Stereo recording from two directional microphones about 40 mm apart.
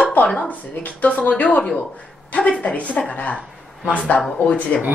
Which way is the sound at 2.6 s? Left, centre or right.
Left.